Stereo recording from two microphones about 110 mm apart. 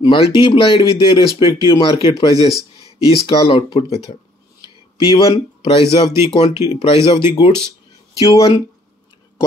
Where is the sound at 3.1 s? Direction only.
50° left (ahead or behind).